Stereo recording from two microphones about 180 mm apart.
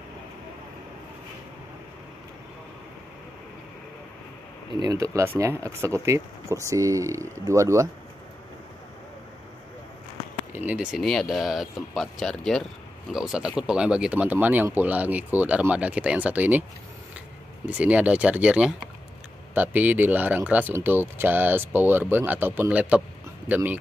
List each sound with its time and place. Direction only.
4.6 s speech: 20° right (ahead or behind)
10.5 s speech: 10° right (ahead or behind)
17.6 s speech: 10° right (ahead or behind)